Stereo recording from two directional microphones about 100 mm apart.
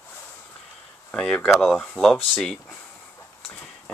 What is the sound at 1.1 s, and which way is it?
Speech, 10° left (ahead or behind).